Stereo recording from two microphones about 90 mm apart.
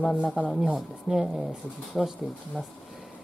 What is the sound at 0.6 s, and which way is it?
Speech, 5° right (ahead or behind).